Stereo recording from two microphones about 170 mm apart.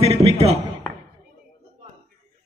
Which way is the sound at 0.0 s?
35° right (ahead or behind).